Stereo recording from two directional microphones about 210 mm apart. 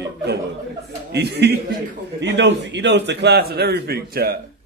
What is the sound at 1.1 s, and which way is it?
A man's voice, 50° right (ahead or behind).